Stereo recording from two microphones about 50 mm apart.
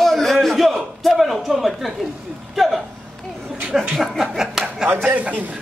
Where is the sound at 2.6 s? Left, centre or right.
Centre.